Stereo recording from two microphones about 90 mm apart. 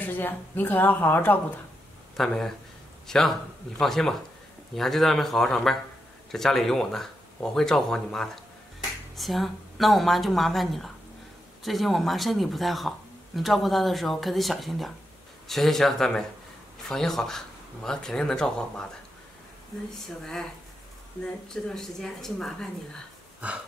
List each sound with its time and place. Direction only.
0.0 s a woman's voice: 20° left (ahead or behind)
2.1 s speech: 5° left (ahead or behind)
19.9 s speech: 5° left (ahead or behind)